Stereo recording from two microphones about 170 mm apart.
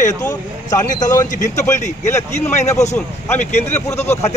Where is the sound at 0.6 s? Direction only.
45° left (ahead or behind).